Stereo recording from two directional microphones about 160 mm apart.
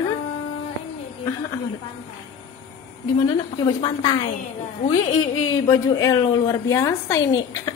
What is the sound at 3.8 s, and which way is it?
Speech, 30° left (ahead or behind).